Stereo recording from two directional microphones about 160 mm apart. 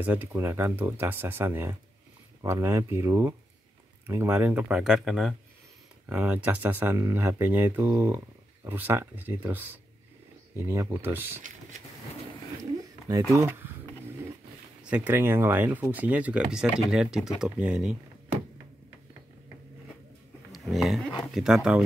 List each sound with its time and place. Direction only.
0.0 s speech: 10° right (ahead or behind)
13.3 s speech: 15° right (ahead or behind)
14.8 s speech: 10° right (ahead or behind)
20.5 s speech: centre (ahead or behind)